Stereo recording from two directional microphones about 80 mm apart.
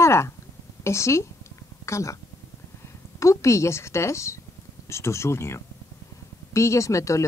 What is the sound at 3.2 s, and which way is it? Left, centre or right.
A woman's voice, left.